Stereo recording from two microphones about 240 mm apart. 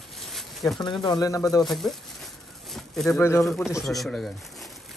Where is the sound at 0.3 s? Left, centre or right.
Centre.